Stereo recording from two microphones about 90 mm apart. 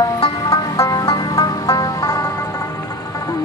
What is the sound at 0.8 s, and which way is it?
Music, 40° left (ahead or behind).